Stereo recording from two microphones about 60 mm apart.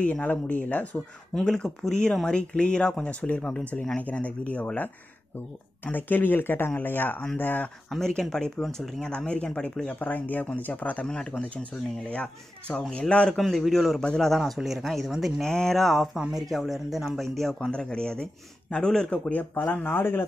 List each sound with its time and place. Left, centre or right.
0.0 s speech: left
1.3 s speech: centre
5.9 s speech: left
8.1 s speech: centre
9.9 s speech: left
11.1 s speech: centre
13.4 s speech: centre
14.4 s speech: centre
15.4 s speech: centre
17.6 s speech: centre
19.5 s speech: left